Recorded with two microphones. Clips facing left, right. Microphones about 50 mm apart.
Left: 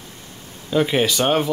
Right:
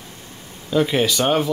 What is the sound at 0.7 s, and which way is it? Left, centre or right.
Speech, centre.